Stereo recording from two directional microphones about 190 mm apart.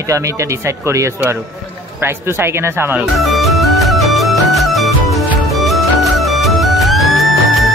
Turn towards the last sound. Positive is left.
turn(degrees=0)  # may be behind; listen again after turning